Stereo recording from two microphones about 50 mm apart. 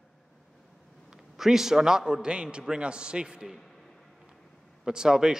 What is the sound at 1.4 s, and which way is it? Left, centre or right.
A man's voice, centre.